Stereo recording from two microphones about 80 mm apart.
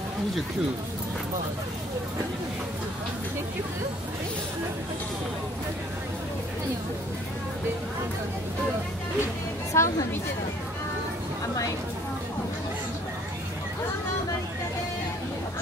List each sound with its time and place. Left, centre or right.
9.7 s speech: left